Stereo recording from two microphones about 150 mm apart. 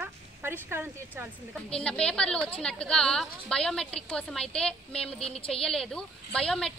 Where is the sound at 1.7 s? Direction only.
5° left (ahead or behind).